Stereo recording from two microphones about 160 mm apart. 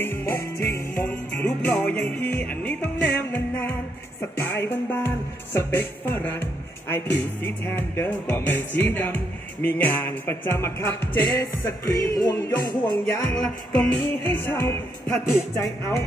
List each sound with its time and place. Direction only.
0.0 s music: 15° left (ahead or behind)
0.4 s music: 75° left (ahead or behind)
1.0 s music: 10° left (ahead or behind)
13.3 s music: 10° left (ahead or behind)